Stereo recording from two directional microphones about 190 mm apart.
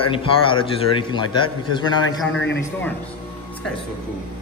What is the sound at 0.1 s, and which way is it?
A man's voice, 25° left (ahead or behind).